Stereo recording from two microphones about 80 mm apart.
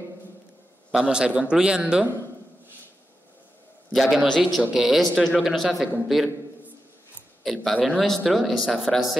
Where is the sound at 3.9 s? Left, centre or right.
Centre.